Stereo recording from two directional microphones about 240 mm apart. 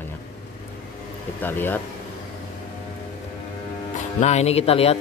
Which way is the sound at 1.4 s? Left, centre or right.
Centre.